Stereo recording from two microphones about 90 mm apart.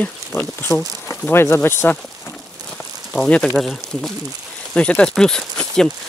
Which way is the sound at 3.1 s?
10° left (ahead or behind).